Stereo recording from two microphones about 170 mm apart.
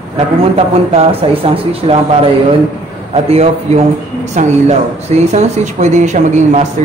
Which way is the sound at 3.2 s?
40° right (ahead or behind).